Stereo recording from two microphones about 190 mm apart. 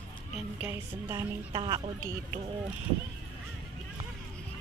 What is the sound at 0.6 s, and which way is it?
Speech, 10° right (ahead or behind).